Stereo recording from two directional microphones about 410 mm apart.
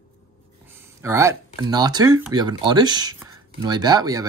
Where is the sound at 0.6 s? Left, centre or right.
Centre.